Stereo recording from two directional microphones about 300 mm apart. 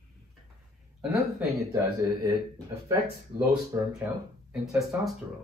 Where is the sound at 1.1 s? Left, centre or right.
Centre.